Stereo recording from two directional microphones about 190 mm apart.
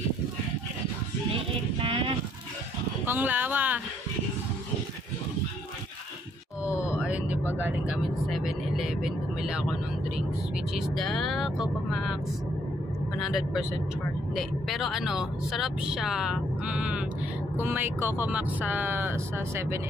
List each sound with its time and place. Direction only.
1.8 s a sound: 30° right (ahead or behind)
3.1 s speech: 10° right (ahead or behind)
7.1 s vehicle: 5° right (ahead or behind)
7.5 s speech: 10° right (ahead or behind)
13.2 s speech: centre (ahead or behind)